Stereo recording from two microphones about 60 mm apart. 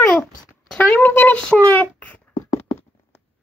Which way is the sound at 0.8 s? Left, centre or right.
Left.